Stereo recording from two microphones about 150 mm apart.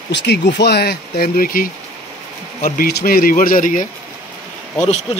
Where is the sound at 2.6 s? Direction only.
90° left; by 3.9 s 60° left (ahead or behind).